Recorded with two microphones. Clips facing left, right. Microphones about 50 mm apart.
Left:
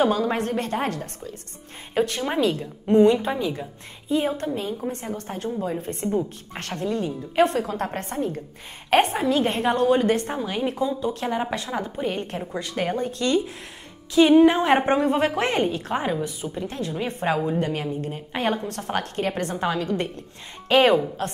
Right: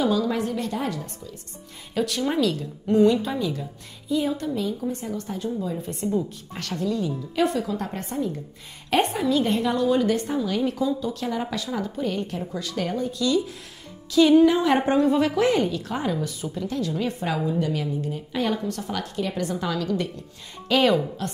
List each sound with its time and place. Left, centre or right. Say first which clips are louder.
0.0 s a woman's voice: left 1 dB; left
2.0 s a woman's voice: left 1 dB; left
14.1 s a woman's voice: left 1 dB; left